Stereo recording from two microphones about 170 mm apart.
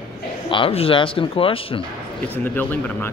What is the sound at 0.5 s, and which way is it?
Speech, 30° left (ahead or behind).